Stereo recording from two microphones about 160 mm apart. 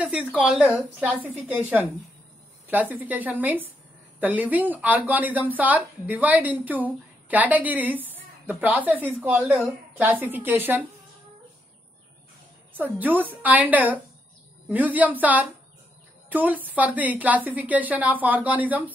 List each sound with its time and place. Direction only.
0.0 s a woman's voice: 10° right (ahead or behind)
1.1 s speech: 10° right (ahead or behind)
12.7 s speech: 10° right (ahead or behind)